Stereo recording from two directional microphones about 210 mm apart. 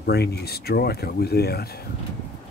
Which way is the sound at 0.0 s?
50° left (ahead or behind).